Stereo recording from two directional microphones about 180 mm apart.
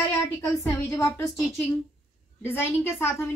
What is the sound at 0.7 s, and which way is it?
A woman's voice, 15° left (ahead or behind).